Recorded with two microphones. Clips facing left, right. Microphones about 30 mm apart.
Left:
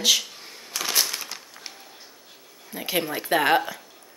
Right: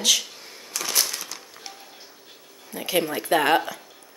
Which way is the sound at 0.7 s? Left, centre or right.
Centre.